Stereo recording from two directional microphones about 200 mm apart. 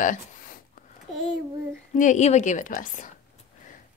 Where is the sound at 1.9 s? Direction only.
40° left (ahead or behind).